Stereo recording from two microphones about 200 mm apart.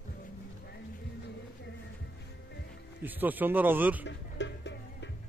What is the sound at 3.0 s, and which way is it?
Speech, 10° right (ahead or behind).